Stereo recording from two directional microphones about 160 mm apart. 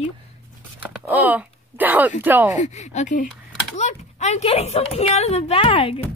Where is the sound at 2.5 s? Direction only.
45° left (ahead or behind).